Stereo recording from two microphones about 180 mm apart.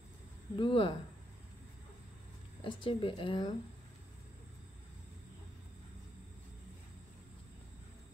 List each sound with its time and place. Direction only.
0.6 s speech: 30° left (ahead or behind)
2.6 s speech: 25° left (ahead or behind)